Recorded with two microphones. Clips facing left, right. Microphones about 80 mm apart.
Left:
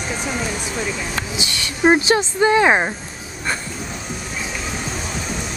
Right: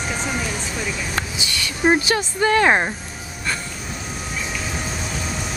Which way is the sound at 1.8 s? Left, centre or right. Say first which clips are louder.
Left 3 dB; left.